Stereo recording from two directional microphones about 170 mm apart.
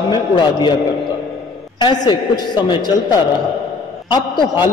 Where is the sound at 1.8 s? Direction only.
25° left (ahead or behind).